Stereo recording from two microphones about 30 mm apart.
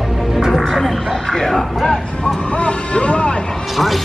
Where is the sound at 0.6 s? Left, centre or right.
Centre.